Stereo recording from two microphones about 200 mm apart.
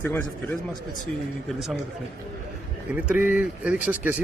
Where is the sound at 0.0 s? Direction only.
10° left (ahead or behind).